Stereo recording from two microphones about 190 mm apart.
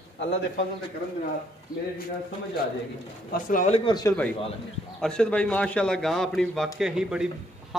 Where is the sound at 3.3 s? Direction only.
40° left (ahead or behind).